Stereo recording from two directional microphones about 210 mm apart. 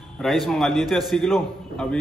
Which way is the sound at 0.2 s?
Centre (ahead or behind).